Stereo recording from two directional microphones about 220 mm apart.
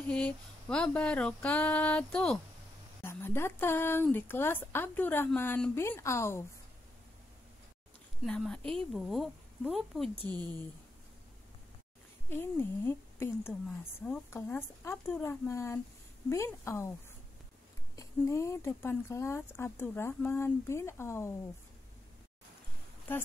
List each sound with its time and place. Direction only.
0.0 s speech: 5° left (ahead or behind)
8.2 s speech: centre (ahead or behind)
12.3 s speech: 10° left (ahead or behind)
17.9 s speech: 15° left (ahead or behind)